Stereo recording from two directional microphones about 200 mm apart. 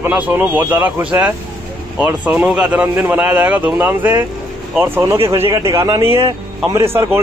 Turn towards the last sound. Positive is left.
turn(degrees=-10)  # may be behind; listen again after turning